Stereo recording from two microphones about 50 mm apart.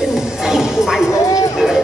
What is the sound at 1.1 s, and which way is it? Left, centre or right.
Bow-wow, left.